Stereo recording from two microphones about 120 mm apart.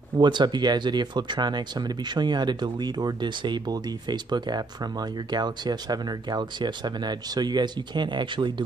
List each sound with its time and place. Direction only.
0.2 s speech: 40° right (ahead or behind)